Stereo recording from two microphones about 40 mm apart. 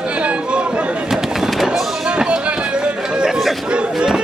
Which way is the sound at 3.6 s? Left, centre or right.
Right.